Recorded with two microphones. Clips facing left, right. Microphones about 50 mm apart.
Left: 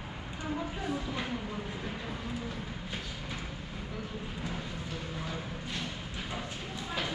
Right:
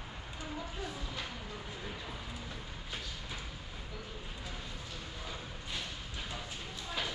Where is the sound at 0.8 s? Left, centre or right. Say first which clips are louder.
Left 7 dB; centre.